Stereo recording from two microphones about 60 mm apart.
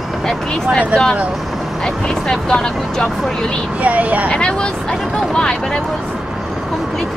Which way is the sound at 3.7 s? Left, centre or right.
Right.